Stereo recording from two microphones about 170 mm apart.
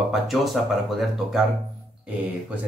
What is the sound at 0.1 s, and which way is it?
Speech, centre (ahead or behind).